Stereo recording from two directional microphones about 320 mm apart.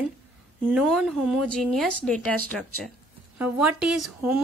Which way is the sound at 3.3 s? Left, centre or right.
Centre.